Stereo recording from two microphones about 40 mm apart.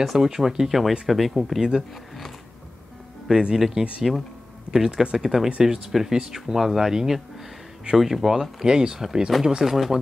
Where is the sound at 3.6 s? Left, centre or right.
Centre.